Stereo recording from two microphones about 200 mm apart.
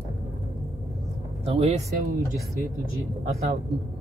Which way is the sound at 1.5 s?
30° right (ahead or behind).